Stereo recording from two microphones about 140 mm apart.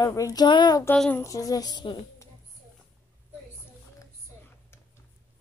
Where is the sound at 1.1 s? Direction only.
20° left (ahead or behind).